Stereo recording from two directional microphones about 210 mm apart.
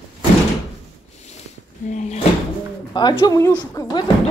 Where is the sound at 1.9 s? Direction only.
35° left (ahead or behind).